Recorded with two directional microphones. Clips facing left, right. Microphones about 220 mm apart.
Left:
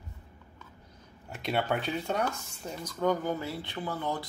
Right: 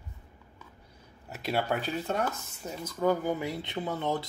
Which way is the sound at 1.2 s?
5° right (ahead or behind).